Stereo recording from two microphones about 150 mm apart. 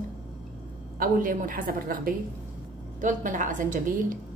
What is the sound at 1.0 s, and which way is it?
A woman's voice, 65° right (ahead or behind).